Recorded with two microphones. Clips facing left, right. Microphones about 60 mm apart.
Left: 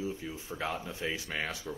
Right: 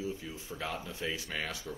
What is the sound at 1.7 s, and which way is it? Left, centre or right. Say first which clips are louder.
Speech: left 2 dB; centre.